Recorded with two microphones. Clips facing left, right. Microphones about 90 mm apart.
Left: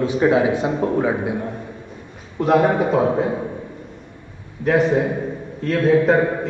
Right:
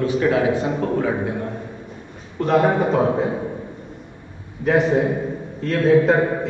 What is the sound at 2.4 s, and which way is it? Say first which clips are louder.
Speech: left 1 dB; 5° left (ahead or behind).